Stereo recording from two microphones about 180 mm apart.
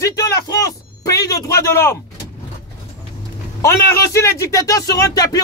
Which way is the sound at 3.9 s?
15° left (ahead or behind).